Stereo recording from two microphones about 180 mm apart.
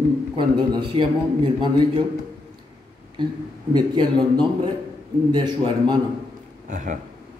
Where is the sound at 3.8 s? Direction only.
25° right (ahead or behind).